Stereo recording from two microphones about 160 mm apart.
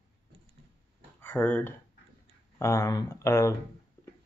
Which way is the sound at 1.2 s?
10° left (ahead or behind).